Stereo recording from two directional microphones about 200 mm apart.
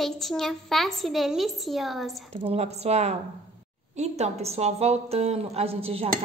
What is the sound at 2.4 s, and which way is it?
Speech, 30° right (ahead or behind).